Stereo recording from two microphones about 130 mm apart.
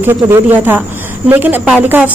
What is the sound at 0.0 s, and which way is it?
Speech, 15° right (ahead or behind).